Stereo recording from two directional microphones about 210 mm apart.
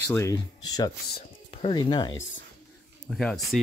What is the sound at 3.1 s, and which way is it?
Speech, centre (ahead or behind).